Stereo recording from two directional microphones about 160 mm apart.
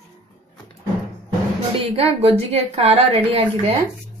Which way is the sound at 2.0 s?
40° right (ahead or behind).